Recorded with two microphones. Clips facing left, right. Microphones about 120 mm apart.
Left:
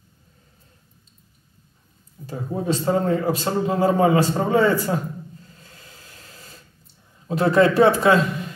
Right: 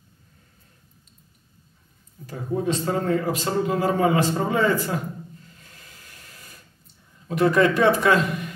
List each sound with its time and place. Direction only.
2.2 s a man's voice: 30° left (ahead or behind)
5.6 s a sound: 30° left (ahead or behind)
7.2 s a man's voice: 30° left (ahead or behind)